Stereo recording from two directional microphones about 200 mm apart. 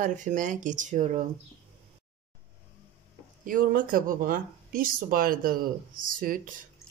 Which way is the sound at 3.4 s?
45° right (ahead or behind).